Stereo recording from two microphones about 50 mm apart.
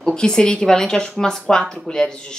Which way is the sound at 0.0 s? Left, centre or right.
Centre.